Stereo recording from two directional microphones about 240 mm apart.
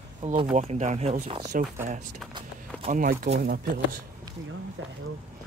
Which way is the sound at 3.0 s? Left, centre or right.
Right.